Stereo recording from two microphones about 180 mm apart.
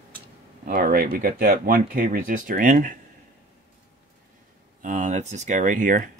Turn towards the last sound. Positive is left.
turn(degrees=-45)  # may be behind; listen again after turning